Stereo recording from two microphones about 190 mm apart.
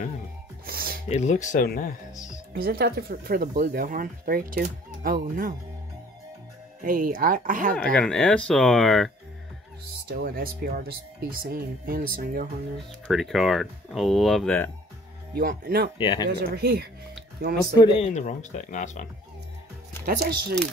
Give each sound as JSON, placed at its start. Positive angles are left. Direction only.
{"t": 0.7, "sound": "music", "side_deg": -50}
{"t": 1.0, "sound": "speech", "side_deg": 35}
{"t": 2.5, "sound": "speech", "side_deg": -55}
{"t": 6.8, "sound": "speech", "side_deg": -45}
{"t": 7.7, "sound": "speech", "side_deg": 5}
{"t": 10.1, "sound": "speech", "side_deg": -50}
{"t": 13.0, "sound": "speech", "side_deg": 0}
{"t": 15.3, "sound": "speech", "side_deg": -55}
{"t": 16.0, "sound": "speech", "side_deg": 25}
{"t": 16.3, "sound": "speech", "side_deg": -55}
{"t": 17.7, "sound": "speech", "side_deg": 25}
{"t": 20.1, "sound": "speech", "side_deg": -55}